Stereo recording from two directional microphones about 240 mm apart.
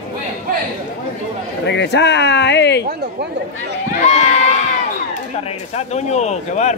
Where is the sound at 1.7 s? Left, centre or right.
Left.